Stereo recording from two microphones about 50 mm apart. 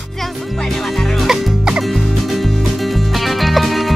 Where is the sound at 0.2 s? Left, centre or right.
Centre.